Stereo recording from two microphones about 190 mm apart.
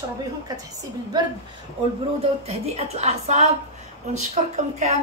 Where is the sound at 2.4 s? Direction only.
35° right (ahead or behind).